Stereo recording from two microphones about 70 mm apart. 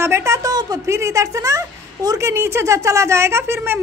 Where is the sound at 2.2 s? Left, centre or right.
Right.